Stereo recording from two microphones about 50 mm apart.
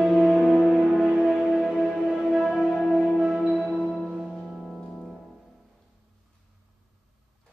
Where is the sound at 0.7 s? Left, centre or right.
Centre.